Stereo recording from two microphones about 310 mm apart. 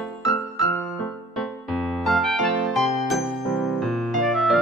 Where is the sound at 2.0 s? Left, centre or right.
Centre.